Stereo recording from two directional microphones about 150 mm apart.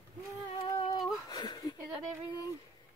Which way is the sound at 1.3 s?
25° left (ahead or behind).